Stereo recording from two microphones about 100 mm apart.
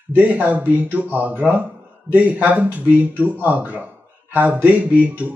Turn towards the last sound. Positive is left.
turn(degrees=-15)  # may be behind; listen again after turning